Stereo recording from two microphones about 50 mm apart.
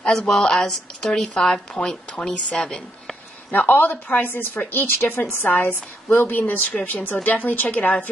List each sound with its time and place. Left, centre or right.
0.0 s speech: centre
3.5 s a woman's voice: left